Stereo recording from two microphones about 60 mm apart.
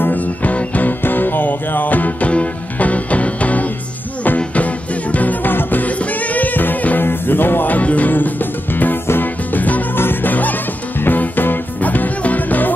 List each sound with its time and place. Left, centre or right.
0.0 s music: left